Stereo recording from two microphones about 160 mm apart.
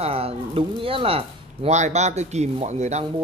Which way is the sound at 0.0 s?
40° right (ahead or behind).